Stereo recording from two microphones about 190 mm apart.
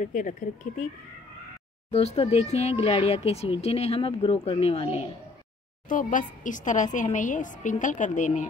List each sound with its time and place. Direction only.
0.0 s speech: 45° left (ahead or behind)
1.9 s speech: 35° left (ahead or behind)
5.9 s speech: 45° left (ahead or behind)